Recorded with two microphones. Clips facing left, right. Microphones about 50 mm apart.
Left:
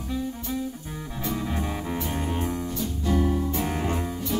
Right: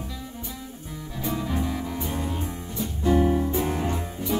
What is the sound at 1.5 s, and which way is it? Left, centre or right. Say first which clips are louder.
Music: right 1 dB; left.